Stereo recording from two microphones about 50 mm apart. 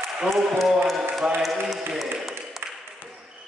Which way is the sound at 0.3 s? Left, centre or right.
Centre.